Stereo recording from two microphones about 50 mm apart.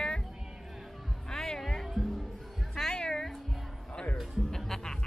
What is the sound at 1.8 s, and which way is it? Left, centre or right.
Music, centre.